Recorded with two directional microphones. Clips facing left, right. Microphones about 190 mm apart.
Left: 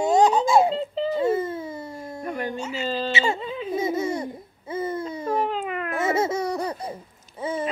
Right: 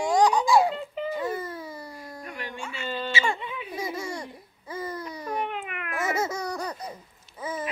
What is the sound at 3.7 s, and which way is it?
Baby laughter, 25° left (ahead or behind).